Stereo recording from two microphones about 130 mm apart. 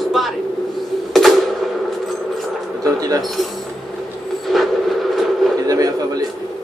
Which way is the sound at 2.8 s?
25° right (ahead or behind).